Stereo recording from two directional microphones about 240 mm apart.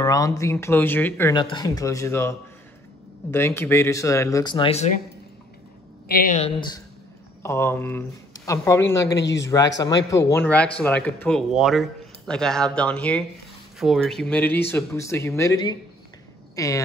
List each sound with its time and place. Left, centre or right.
0.0 s speech: centre
6.0 s speech: left
7.4 s speech: centre
9.2 s speech: left
10.1 s speech: centre